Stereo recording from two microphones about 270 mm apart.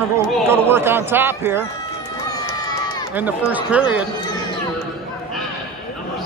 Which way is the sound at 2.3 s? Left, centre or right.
Centre.